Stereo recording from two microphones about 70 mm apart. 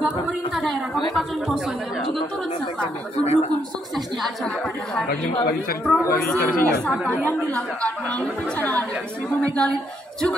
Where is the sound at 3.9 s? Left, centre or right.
Centre.